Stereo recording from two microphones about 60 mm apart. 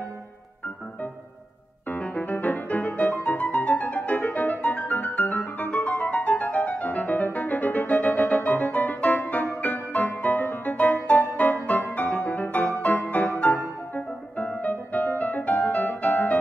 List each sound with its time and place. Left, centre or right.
1.9 s music: left